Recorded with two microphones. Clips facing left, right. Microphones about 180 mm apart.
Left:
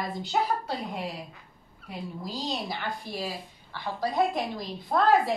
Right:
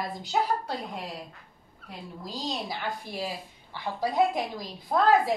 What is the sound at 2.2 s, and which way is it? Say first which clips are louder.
Speech: even; centre (ahead or behind).